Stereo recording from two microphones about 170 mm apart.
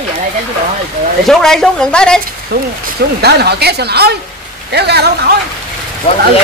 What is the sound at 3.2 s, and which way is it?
A woman's voice, 70° right (ahead or behind).